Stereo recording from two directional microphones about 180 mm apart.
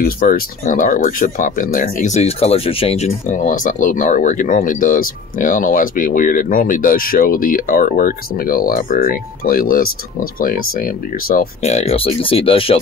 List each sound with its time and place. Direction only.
0.0 s speech: 50° left (ahead or behind); by 12.7 s 30° left (ahead or behind)